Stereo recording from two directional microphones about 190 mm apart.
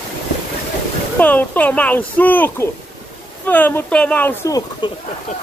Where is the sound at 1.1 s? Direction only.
10° left (ahead or behind).